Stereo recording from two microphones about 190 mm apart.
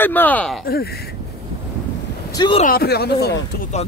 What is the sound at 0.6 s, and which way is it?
Speech, 55° left (ahead or behind).